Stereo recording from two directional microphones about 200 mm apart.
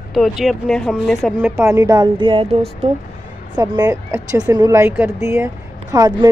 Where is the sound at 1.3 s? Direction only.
10° right (ahead or behind); by 2.9 s 30° right (ahead or behind).